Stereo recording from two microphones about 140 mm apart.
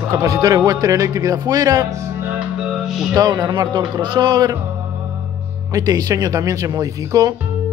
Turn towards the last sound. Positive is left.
turn(degrees=-25)  # may be behind; listen again after turning